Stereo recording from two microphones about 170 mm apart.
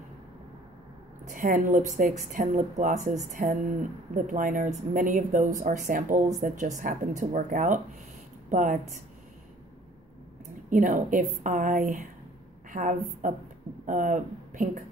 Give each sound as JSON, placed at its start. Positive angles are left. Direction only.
{"t": 1.2, "sound": "speech", "side_deg": -50}
{"t": 10.7, "sound": "speech", "side_deg": -50}